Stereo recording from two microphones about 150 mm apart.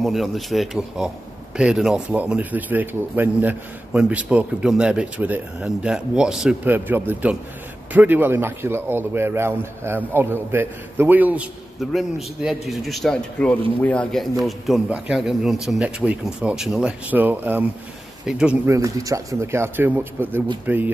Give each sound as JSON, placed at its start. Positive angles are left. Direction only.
{"t": 0.0, "sound": "a man's voice", "side_deg": 0}
{"t": 14.4, "sound": "speech", "side_deg": -5}
{"t": 18.7, "sound": "a man's voice", "side_deg": -20}